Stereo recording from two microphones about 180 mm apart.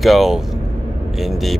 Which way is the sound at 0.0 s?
Centre (ahead or behind).